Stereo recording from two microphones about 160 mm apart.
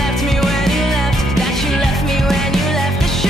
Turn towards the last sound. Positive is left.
turn(degrees=0)  # may be behind; listen again after turning